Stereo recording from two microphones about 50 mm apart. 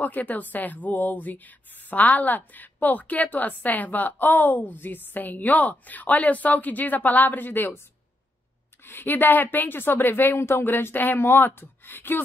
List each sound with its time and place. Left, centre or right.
0.0 s a woman's voice: left
8.8 s speech: left